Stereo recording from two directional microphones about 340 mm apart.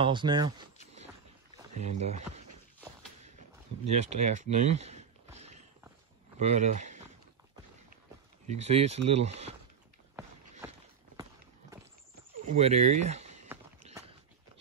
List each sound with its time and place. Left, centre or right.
0.0 s speech: centre
1.8 s speech: centre
3.8 s speech: centre
8.5 s speech: centre
12.4 s speech: centre